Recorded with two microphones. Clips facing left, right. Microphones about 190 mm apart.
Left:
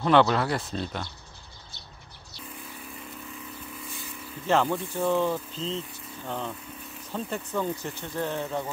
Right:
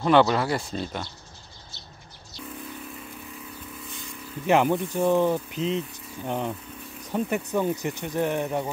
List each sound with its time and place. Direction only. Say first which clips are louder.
0.0 s speech: right 1 dB; 5° right (ahead or behind)
4.5 s speech: right 4 dB; 15° right (ahead or behind)